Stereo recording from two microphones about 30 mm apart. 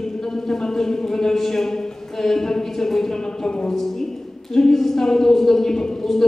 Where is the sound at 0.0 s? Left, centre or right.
Centre.